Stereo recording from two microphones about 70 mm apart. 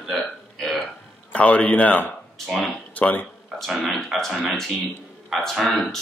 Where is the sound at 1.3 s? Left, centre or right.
Centre.